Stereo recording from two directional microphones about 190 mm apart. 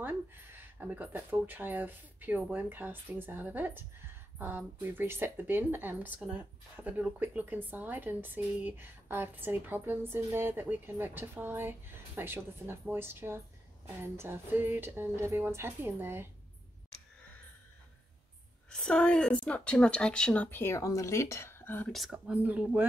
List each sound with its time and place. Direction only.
0.0 s speech: 10° right (ahead or behind)
18.7 s speech: 5° left (ahead or behind)
21.9 s speech: centre (ahead or behind)